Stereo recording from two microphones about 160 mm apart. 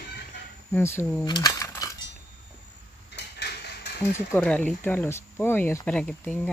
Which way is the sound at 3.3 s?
90° left.